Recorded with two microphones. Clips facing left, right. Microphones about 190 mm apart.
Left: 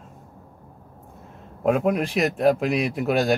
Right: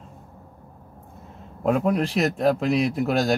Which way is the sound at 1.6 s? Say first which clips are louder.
Left 1 dB; 10° left (ahead or behind).